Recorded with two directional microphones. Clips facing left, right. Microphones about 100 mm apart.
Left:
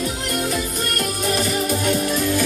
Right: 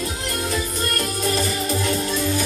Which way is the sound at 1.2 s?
70° left (ahead or behind).